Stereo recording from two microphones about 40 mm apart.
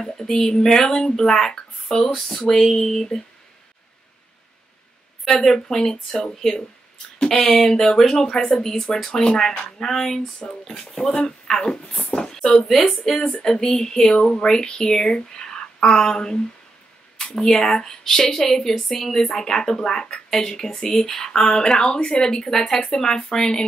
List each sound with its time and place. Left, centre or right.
0.0 s speech: centre
5.2 s speech: centre
13.4 s a woman's voice: centre